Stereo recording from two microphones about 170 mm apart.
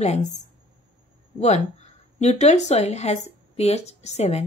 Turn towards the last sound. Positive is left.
turn(degrees=40)  # may be behind; listen again after turning